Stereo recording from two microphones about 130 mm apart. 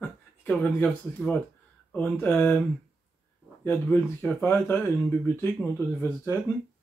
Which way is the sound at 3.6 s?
15° left (ahead or behind).